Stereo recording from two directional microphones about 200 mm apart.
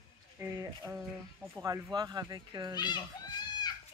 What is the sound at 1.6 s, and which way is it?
Speech, 20° right (ahead or behind).